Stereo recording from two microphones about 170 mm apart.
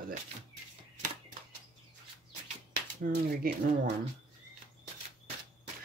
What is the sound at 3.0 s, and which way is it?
Speech, 55° right (ahead or behind).